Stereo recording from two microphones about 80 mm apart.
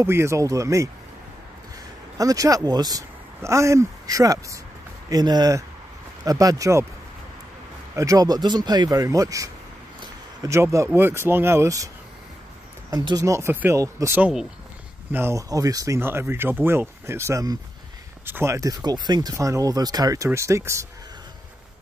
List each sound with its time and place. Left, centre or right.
0.0 s speech: right
2.1 s speech: right
3.4 s speech: right
5.1 s speech: right
7.9 s speech: right
10.5 s speech: right
13.1 s speech: right
13.5 s speech: right
13.7 s speech: right
15.3 s speech: right
16.0 s speech: right
18.8 s speech: right
19.3 s speech: right
20.2 s speech: right